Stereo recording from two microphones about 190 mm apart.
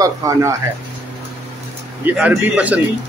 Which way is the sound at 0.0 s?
15° right (ahead or behind).